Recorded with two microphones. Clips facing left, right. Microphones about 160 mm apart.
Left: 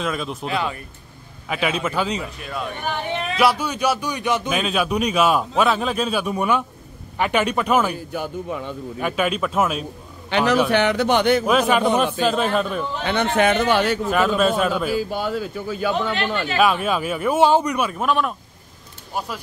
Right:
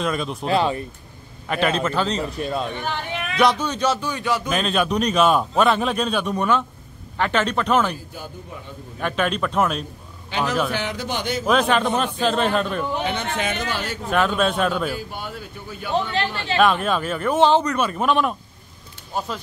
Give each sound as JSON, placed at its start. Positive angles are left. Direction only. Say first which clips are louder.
{"t": 0.0, "sound": "a man's voice", "louder": "right 1 dB", "side_deg": 0}
{"t": 0.5, "sound": "speech", "louder": "right 6 dB", "side_deg": -30}
{"t": 1.5, "sound": "speech", "louder": "right 2 dB", "side_deg": 5}
{"t": 2.3, "sound": "speech", "louder": "right 4 dB", "side_deg": -30}
{"t": 3.3, "sound": "speech", "louder": "right 1 dB", "side_deg": 10}
{"t": 4.5, "sound": "a man's voice", "louder": "even", "side_deg": 5}
{"t": 8.1, "sound": "a man's voice", "louder": "left 9 dB", "side_deg": 80}
{"t": 9.0, "sound": "a man's voice", "louder": "left 1 dB", "side_deg": 5}
{"t": 10.3, "sound": "a man's voice", "louder": "left 5 dB", "side_deg": 75}
{"t": 11.4, "sound": "a man's voice", "louder": "left 1 dB", "side_deg": 5}
{"t": 13.0, "sound": "speech", "louder": "left 6 dB", "side_deg": 65}
{"t": 14.1, "sound": "a man's voice", "louder": "even", "side_deg": 0}
{"t": 15.0, "sound": "speech", "louder": "left 9 dB", "side_deg": 90}
{"t": 16.5, "sound": "speech", "louder": "right 1 dB", "side_deg": 5}